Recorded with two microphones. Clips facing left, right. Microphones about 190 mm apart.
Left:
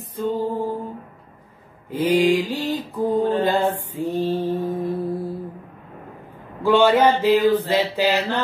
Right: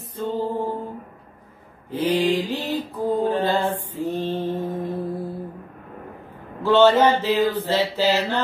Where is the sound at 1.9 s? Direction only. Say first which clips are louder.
Left 3 dB; 10° left (ahead or behind).